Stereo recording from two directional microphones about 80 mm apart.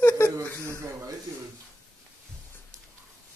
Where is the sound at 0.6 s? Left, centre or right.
Right.